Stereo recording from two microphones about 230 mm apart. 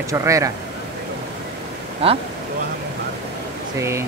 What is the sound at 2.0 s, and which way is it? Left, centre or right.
Speech, right.